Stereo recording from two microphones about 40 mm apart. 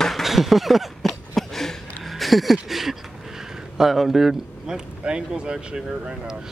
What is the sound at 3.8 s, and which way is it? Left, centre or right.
Speech, centre.